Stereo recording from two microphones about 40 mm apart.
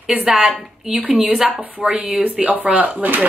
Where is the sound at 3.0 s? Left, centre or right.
Right.